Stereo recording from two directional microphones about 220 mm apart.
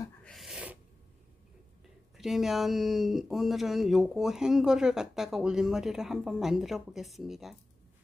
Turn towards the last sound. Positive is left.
turn(degrees=0)  # may be behind; listen again after turning